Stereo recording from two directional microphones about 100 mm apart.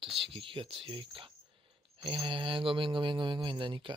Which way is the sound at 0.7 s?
60° right (ahead or behind).